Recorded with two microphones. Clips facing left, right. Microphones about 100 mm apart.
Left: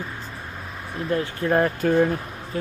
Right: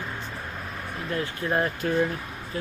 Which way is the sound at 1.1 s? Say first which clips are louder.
Left 6 dB; 30° left (ahead or behind).